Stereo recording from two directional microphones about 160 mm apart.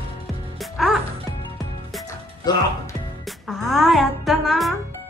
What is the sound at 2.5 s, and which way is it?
Speech, 25° left (ahead or behind).